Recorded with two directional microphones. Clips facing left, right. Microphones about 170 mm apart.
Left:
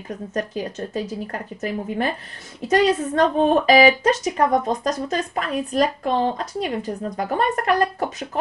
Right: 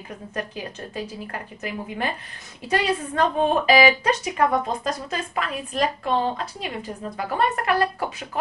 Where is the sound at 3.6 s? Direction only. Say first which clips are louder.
Left 2 dB; 40° left (ahead or behind).